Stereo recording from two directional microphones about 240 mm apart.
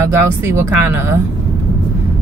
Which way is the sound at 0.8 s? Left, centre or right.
Centre.